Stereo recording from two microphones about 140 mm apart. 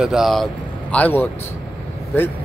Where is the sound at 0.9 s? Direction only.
15° left (ahead or behind).